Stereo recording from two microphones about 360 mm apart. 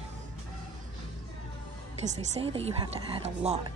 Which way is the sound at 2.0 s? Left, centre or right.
Centre.